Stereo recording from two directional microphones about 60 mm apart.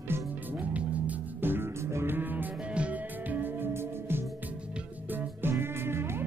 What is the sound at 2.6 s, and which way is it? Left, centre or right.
Music, centre.